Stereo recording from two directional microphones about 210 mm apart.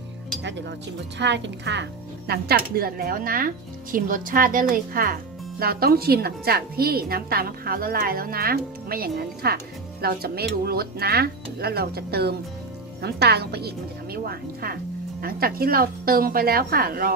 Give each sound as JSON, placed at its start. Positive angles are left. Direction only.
{"t": 0.4, "sound": "speech", "side_deg": -55}